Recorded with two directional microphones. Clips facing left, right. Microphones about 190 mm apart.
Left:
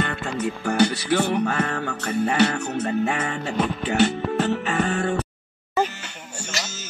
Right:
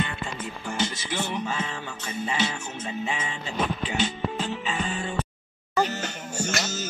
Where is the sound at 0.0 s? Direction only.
70° left (ahead or behind).